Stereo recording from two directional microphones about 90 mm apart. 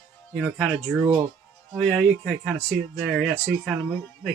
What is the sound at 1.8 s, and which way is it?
Speech, 5° left (ahead or behind).